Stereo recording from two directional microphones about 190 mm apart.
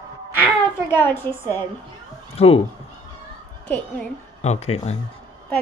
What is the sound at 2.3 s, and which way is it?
Speech, 30° left (ahead or behind).